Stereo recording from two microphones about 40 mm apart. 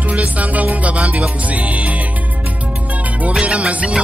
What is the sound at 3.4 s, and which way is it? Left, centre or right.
Music, right.